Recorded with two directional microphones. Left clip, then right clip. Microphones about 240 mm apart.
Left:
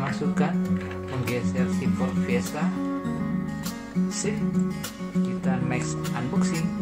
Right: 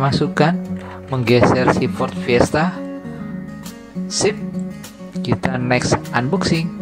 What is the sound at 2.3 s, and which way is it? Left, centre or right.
Speech, right.